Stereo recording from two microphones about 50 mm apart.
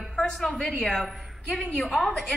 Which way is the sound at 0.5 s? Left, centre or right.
Centre.